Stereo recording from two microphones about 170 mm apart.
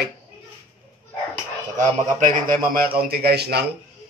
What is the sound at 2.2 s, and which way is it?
A man's voice, 50° right (ahead or behind).